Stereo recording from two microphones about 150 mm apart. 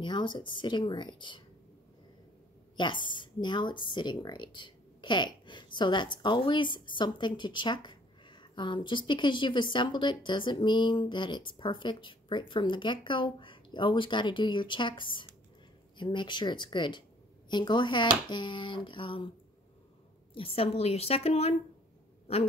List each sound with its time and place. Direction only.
0.0 s speech: 30° left (ahead or behind)
2.8 s speech: 30° left (ahead or behind)
20.3 s a woman's voice: 40° left (ahead or behind)